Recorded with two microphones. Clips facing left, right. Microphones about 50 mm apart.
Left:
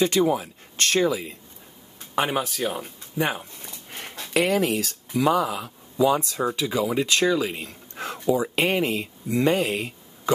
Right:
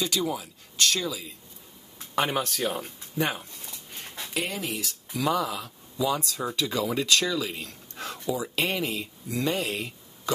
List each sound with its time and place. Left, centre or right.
0.0 s speech: left
2.1 s speech: centre
4.3 s speech: left
5.1 s speech: centre
6.4 s speech: centre
7.1 s speech: left